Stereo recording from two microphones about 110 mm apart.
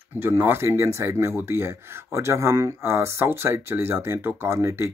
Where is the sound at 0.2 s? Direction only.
20° right (ahead or behind).